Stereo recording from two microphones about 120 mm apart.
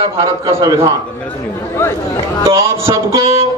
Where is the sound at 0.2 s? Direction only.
25° right (ahead or behind).